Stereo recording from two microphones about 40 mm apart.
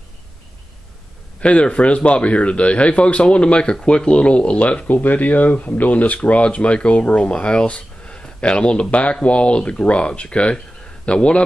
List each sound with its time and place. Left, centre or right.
1.4 s speech: left